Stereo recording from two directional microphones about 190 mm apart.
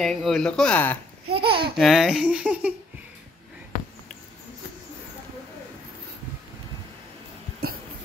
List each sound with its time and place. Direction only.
0.0 s speech: centre (ahead or behind)
1.3 s speech: 30° right (ahead or behind)
1.8 s speech: centre (ahead or behind)